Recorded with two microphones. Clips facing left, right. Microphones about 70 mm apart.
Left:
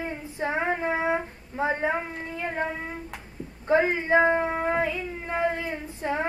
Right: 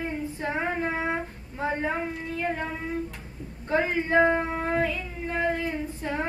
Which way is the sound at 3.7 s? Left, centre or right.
Centre.